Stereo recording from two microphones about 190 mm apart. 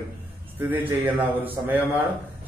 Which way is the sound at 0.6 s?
10° right (ahead or behind).